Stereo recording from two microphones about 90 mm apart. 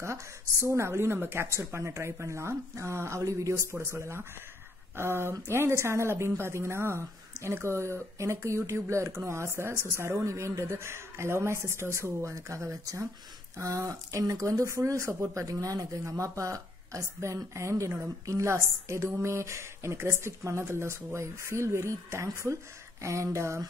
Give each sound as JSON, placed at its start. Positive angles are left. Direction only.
{"t": 0.0, "sound": "speech", "side_deg": -30}